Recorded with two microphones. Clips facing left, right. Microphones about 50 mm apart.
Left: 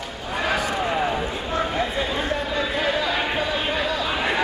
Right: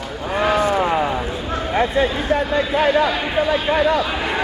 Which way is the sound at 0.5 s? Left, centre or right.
Right.